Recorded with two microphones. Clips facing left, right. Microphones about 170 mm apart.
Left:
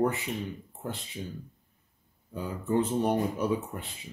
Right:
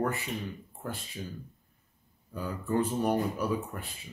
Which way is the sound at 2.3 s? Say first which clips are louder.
Left 2 dB; 20° left (ahead or behind).